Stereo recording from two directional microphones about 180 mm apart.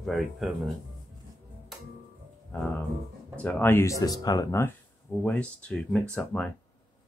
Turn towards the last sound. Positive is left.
turn(degrees=5)  # may be behind; listen again after turning